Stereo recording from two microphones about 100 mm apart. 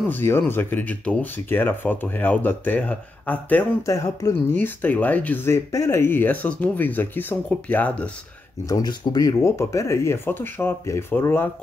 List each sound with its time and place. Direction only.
0.0 s speech: 20° left (ahead or behind)
3.8 s speech: 30° left (ahead or behind)
4.6 s speech: 20° left (ahead or behind)
8.6 s speech: 45° left (ahead or behind)
9.4 s speech: 30° left (ahead or behind)